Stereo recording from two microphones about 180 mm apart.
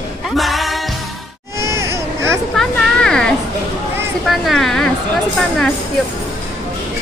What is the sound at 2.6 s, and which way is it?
Music, 5° left (ahead or behind).